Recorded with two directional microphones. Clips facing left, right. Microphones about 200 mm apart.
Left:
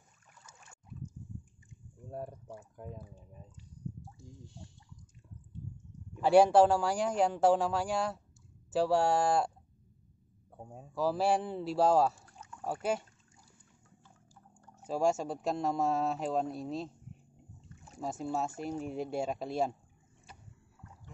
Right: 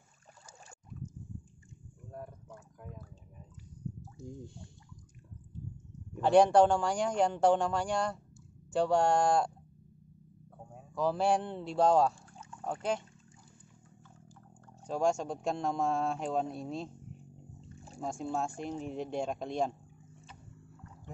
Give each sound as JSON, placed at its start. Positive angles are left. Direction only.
{"t": 2.0, "sound": "a sound", "side_deg": 30}
{"t": 2.8, "sound": "speech", "side_deg": 30}
{"t": 4.2, "sound": "speech", "side_deg": -50}
{"t": 6.2, "sound": "speech", "side_deg": 5}
{"t": 11.0, "sound": "speech", "side_deg": 5}
{"t": 14.9, "sound": "speech", "side_deg": 5}
{"t": 17.6, "sound": "pour", "side_deg": -30}
{"t": 18.0, "sound": "speech", "side_deg": 5}